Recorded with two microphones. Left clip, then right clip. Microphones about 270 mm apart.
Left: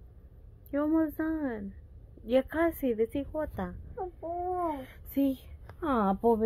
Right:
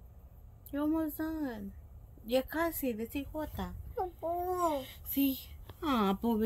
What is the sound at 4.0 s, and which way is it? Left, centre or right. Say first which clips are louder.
Speech: right 1 dB; right.